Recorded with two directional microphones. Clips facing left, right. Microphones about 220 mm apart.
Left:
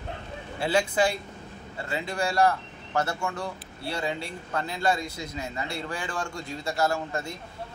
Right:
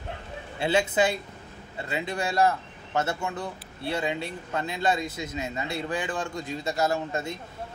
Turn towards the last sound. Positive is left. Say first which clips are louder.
# right 1 dB
turn(degrees=-20)  # may be behind; listen again after turning